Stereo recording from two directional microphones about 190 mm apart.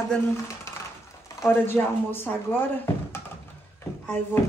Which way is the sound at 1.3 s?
10° left (ahead or behind).